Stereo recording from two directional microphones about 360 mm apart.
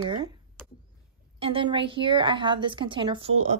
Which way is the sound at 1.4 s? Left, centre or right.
Centre.